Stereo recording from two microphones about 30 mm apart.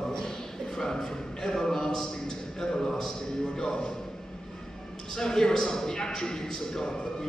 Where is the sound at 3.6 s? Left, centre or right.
Left.